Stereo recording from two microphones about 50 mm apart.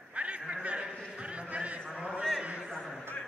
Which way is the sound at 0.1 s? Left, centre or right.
Right.